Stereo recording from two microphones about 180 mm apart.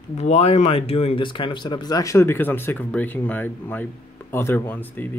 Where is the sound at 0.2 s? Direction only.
35° left (ahead or behind).